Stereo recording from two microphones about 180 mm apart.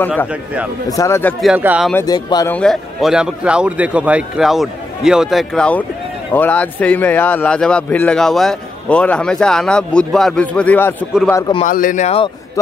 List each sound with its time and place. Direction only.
0.8 s a man's voice: 15° left (ahead or behind)
1.4 s a man's voice: 5° right (ahead or behind)
2.0 s speech: 20° left (ahead or behind)
2.5 s a man's voice: 5° left (ahead or behind)
11.6 s speech: 45° left (ahead or behind)